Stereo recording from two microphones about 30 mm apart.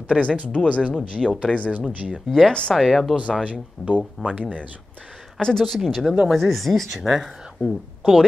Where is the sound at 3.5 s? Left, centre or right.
Right.